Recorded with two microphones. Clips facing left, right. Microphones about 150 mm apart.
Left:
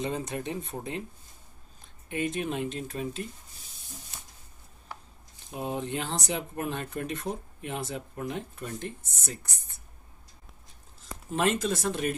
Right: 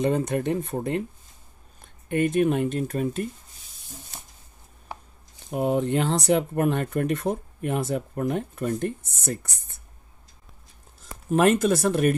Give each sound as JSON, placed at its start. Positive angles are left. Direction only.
{"t": 0.0, "sound": "speech", "side_deg": -55}
{"t": 2.0, "sound": "speech", "side_deg": -55}
{"t": 5.5, "sound": "speech", "side_deg": -60}
{"t": 11.2, "sound": "speech", "side_deg": -60}